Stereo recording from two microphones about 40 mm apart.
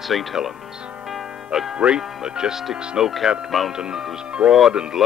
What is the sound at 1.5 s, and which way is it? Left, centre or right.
Speech, centre.